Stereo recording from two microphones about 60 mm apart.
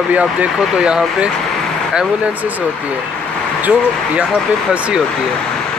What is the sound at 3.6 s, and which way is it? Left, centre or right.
Speech, right.